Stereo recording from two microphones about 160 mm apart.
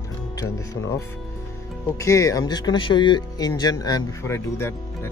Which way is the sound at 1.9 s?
20° left (ahead or behind).